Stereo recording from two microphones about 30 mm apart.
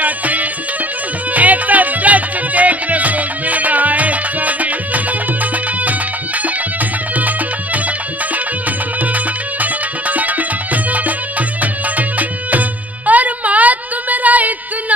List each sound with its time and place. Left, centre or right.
0.0 s music: right
7.2 s music: right
9.1 s music: right
12.2 s music: right